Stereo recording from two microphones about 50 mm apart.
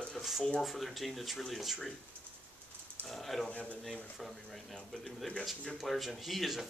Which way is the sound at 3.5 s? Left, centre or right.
Left.